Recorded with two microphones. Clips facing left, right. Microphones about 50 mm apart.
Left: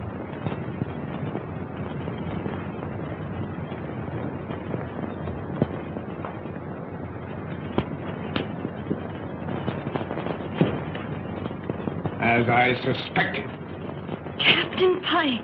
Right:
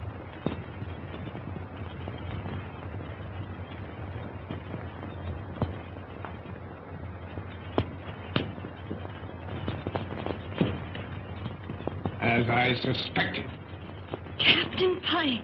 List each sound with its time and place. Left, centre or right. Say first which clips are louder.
5.6 s fireworks: left 8 dB; centre
9.9 s a sound: left 5 dB; centre
12.2 s speech: left 6 dB; centre
12.7 s speech: left 5 dB; centre
14.4 s a sound: left 3 dB; centre
14.9 s speech: left 5 dB; centre